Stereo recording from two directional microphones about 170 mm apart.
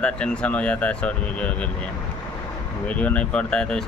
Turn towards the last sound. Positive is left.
turn(degrees=5)  # may be behind; listen again after turning